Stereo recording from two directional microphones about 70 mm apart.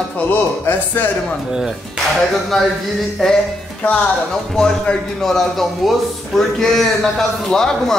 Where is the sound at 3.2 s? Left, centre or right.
Centre.